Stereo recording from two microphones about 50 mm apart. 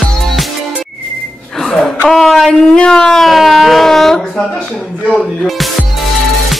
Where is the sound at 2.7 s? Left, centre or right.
Centre.